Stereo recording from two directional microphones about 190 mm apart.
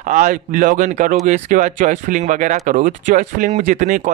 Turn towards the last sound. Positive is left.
turn(degrees=-40)  # may be behind; listen again after turning